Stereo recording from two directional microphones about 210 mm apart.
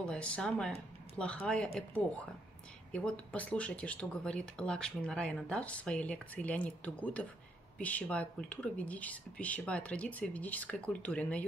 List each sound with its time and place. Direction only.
0.0 s speech: 5° left (ahead or behind)
2.9 s speech: 5° left (ahead or behind)